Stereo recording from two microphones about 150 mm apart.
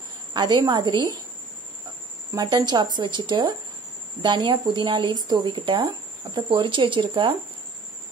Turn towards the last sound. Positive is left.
turn(degrees=-35)  # may be behind; listen again after turning